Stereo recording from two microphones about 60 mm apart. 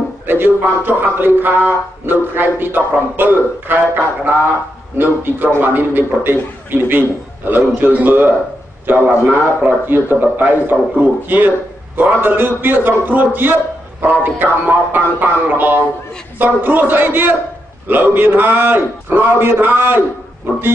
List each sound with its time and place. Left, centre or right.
0.3 s a man's voice: right